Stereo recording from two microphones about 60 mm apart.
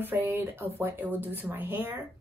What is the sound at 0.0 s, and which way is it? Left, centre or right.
Speech, right.